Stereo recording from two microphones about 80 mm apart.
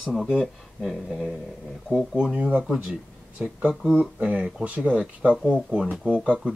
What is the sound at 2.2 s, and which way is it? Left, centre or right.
Speech, centre.